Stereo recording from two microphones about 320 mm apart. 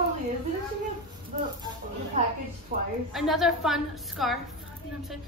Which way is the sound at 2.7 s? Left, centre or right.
Right.